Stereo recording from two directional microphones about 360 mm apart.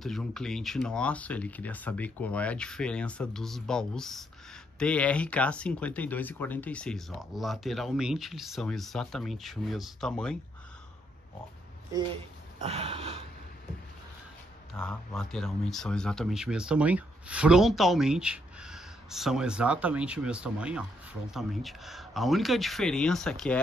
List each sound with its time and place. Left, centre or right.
0.0 s speech: centre
11.9 s a sound: centre
14.8 s speech: centre